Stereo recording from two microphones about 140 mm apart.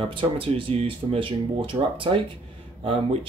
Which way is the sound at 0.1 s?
40° right (ahead or behind).